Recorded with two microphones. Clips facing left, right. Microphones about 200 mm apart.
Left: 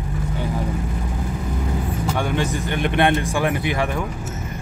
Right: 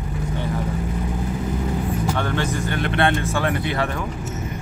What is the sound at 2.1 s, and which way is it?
Speech, 10° left (ahead or behind).